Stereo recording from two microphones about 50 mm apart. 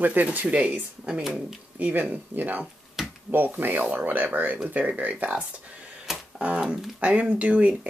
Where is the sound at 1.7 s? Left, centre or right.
Right.